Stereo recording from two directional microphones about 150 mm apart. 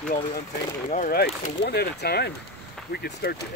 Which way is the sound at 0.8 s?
55° left (ahead or behind).